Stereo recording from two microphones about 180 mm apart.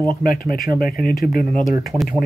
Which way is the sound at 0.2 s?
55° left (ahead or behind).